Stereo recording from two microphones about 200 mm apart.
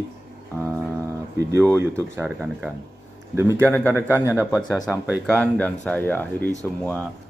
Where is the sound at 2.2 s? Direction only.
Centre (ahead or behind).